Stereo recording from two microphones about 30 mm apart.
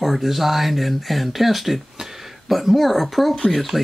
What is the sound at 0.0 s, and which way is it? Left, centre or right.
Speech, centre.